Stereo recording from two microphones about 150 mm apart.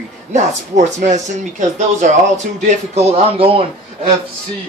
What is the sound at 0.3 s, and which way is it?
Speech, 50° right (ahead or behind).